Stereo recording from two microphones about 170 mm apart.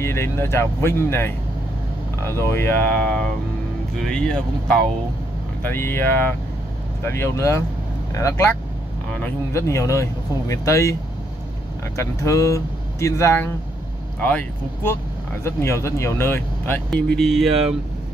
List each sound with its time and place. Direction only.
0.0 s speech: 15° left (ahead or behind)
12.0 s speech: 15° left (ahead or behind); by 17.7 s centre (ahead or behind)